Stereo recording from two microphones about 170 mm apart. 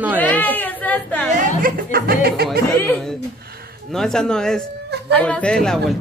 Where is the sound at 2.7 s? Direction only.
10° left (ahead or behind).